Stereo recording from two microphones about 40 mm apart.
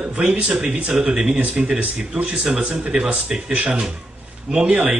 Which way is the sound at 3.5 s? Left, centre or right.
Right.